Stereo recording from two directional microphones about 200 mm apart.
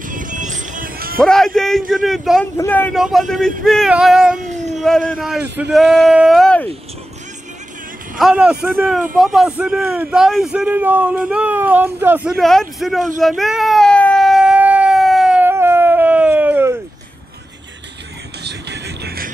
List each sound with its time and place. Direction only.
0.1 s music: 40° right (ahead or behind)
1.2 s a man's voice: 5° left (ahead or behind)
2.5 s a man's voice: 10° left (ahead or behind)
8.2 s a man's voice: 5° right (ahead or behind)
13.2 s baby cry: centre (ahead or behind)
18.4 s vehicle: 55° right (ahead or behind)